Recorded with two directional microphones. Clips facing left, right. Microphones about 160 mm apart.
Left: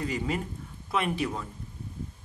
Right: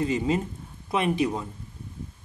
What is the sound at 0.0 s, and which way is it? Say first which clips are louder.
Speech: right 6 dB; 25° right (ahead or behind).